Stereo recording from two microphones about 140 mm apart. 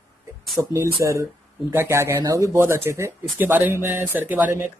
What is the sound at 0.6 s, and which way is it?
Speech, 15° right (ahead or behind).